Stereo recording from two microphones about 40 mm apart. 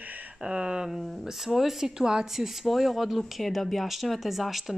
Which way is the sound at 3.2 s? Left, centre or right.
Centre.